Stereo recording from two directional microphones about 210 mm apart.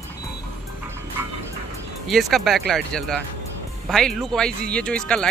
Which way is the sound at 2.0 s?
Centre (ahead or behind).